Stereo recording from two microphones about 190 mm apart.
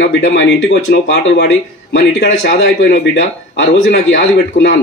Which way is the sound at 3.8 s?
55° left (ahead or behind).